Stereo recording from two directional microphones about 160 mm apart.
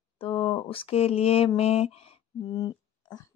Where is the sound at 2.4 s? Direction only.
25° left (ahead or behind).